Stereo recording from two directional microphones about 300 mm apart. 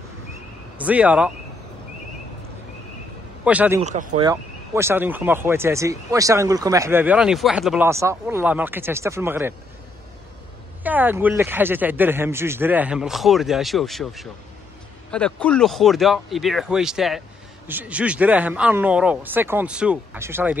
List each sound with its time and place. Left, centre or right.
0.7 s speech: centre
3.4 s speech: centre
3.8 s speech: right
4.3 s speech: centre
10.8 s speech: centre